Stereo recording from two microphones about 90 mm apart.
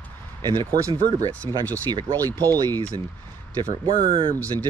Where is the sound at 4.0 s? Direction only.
75° right (ahead or behind).